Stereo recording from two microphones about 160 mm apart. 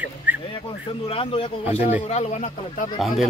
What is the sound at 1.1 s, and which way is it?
A man's voice, 35° left (ahead or behind).